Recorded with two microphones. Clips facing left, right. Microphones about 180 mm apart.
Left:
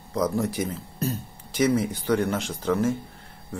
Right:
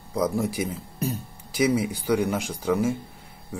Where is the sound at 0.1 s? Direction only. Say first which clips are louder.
Even; 10° right (ahead or behind).